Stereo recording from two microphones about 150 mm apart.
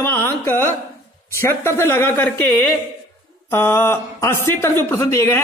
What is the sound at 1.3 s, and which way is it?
Speech, 15° left (ahead or behind).